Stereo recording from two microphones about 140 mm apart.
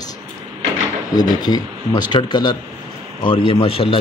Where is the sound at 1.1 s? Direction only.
30° left (ahead or behind).